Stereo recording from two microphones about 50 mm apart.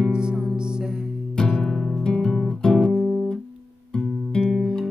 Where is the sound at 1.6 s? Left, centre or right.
Centre.